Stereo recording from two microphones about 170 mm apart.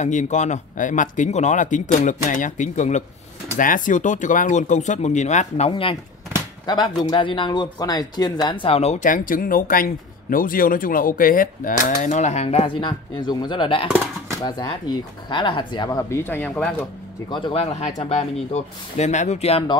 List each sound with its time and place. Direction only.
0.0 s a man's voice: 45° left (ahead or behind)
5.7 s speech: 30° left (ahead or behind)
9.0 s a man's voice: 55° left (ahead or behind); by 16.7 s 5° left (ahead or behind)
17.3 s speech: 35° left (ahead or behind)